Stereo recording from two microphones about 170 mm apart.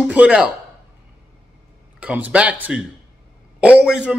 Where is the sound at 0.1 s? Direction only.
5° right (ahead or behind).